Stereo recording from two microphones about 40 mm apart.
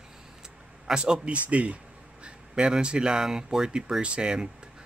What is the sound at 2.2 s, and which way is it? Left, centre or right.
A man's voice, right.